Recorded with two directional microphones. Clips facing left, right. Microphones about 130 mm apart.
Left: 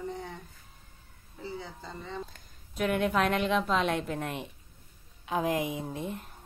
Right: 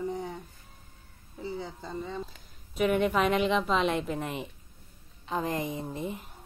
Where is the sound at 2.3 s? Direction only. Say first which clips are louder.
Right 1 dB; centre (ahead or behind).